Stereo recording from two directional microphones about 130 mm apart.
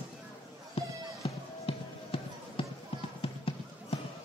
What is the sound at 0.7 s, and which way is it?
Music, 45° left (ahead or behind).